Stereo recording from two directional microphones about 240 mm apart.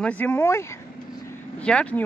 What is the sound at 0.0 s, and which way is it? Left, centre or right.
Speech, centre.